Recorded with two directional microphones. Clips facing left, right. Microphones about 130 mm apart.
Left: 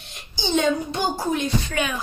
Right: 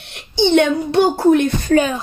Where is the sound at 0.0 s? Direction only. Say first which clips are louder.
Right 13 dB; 65° right (ahead or behind); by 1.9 s 45° right (ahead or behind).